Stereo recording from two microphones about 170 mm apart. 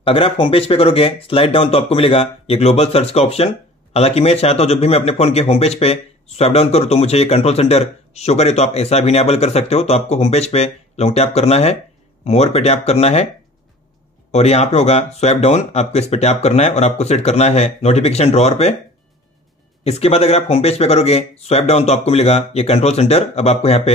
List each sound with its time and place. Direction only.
0.0 s a man's voice: 35° left (ahead or behind)
14.3 s a man's voice: 40° left (ahead or behind)
19.8 s a man's voice: 35° left (ahead or behind)